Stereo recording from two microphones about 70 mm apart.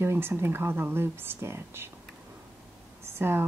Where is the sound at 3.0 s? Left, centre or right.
Right.